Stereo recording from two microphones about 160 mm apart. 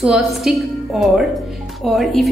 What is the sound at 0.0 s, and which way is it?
A woman's voice, centre (ahead or behind).